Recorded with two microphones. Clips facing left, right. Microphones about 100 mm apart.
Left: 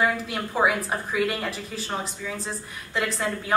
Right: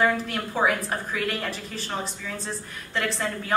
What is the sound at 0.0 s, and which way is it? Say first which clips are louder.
A woman's voice: right 1 dB; 5° left (ahead or behind).